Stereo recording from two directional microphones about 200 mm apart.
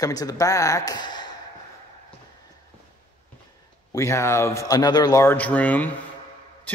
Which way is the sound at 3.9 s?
15° left (ahead or behind).